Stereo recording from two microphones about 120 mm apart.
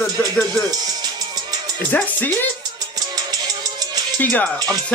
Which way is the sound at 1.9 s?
15° left (ahead or behind).